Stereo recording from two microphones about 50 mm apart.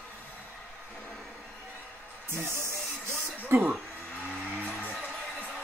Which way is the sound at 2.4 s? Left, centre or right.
Right.